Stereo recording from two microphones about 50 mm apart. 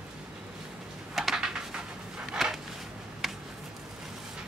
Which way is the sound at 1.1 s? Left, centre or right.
Centre.